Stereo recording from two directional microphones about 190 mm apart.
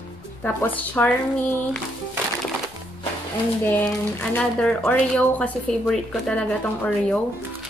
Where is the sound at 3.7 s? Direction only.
10° left (ahead or behind).